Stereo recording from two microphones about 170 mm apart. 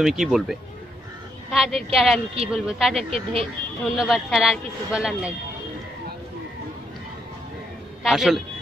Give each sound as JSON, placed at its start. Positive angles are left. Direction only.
{"t": 0.0, "sound": "a man's voice", "side_deg": 0}
{"t": 3.0, "sound": "speech", "side_deg": -35}
{"t": 3.9, "sound": "a man's voice", "side_deg": 0}
{"t": 8.0, "sound": "a man's voice", "side_deg": 0}